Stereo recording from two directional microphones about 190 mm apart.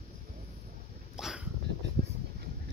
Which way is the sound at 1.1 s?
5° right (ahead or behind).